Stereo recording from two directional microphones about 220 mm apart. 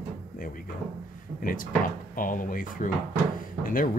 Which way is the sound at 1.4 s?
40° left (ahead or behind).